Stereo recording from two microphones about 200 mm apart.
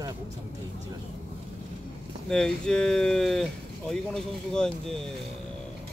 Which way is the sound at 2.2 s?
5° left (ahead or behind).